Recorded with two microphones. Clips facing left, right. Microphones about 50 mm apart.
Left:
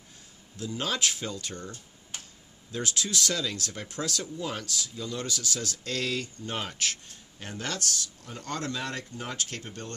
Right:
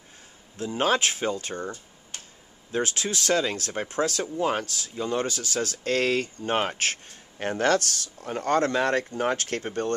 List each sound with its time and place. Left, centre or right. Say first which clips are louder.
0.6 s speech: right 7 dB; right